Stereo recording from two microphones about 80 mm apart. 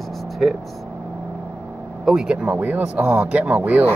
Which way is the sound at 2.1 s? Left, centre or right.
Centre.